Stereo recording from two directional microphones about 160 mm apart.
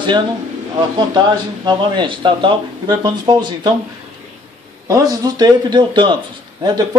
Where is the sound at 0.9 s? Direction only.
25° right (ahead or behind).